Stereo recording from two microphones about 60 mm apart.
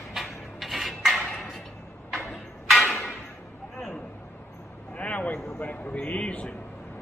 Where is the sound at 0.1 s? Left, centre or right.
Centre.